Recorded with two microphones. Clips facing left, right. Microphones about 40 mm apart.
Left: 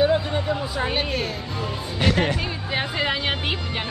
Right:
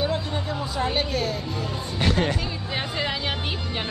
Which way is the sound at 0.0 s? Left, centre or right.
Centre.